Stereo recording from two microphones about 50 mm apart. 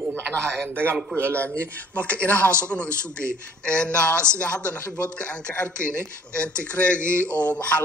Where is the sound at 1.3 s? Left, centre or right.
Left.